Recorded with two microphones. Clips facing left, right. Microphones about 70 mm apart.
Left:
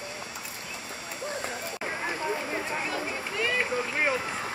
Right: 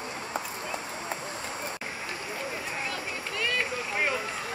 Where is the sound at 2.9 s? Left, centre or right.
Centre.